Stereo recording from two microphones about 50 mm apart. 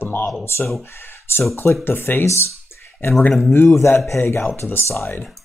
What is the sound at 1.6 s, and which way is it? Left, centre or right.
Speech, left.